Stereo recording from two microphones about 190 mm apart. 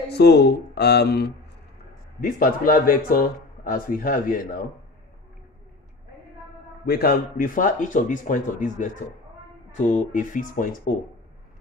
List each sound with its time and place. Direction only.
0.1 s speech: 60° left (ahead or behind)
2.1 s speech: 50° left (ahead or behind)
6.9 s speech: 55° left (ahead or behind)